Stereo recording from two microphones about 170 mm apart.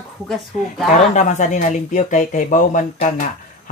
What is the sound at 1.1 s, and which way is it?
Speech, 45° left (ahead or behind).